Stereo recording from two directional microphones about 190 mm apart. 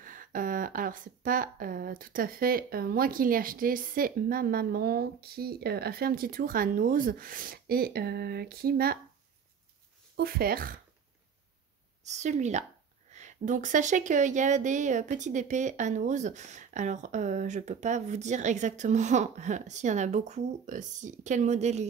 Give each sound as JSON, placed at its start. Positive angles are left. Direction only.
{"t": 0.0, "sound": "a woman's voice", "side_deg": -45}
{"t": 10.1, "sound": "a woman's voice", "side_deg": -55}
{"t": 12.0, "sound": "speech", "side_deg": -35}